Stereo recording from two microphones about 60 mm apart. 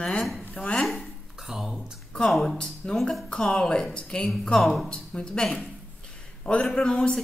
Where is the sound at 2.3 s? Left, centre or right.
Centre.